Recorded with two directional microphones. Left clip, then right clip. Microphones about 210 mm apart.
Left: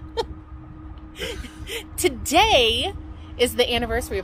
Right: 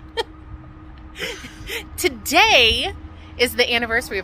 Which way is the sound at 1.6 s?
15° left (ahead or behind).